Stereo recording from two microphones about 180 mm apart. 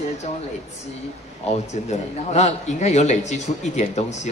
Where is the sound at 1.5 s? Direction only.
40° left (ahead or behind).